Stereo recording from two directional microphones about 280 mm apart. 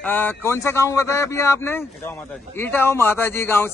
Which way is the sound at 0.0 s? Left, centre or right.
Centre.